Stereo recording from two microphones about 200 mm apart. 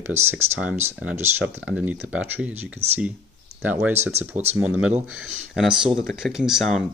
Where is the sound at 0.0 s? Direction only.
10° right (ahead or behind).